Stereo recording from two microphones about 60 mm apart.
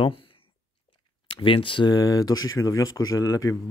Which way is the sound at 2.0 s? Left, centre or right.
Left.